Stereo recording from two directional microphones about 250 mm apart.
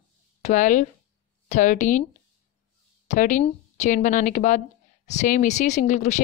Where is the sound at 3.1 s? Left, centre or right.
Left.